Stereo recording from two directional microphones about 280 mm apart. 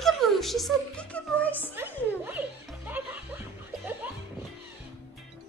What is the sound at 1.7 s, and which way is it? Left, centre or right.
Music, centre.